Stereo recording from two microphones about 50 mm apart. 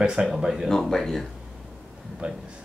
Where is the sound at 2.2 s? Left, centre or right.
Right.